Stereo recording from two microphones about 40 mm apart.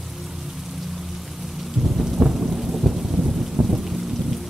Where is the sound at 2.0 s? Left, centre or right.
Centre.